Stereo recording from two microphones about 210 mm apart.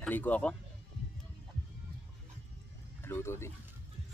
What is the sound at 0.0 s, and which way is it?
Speech, 5° left (ahead or behind).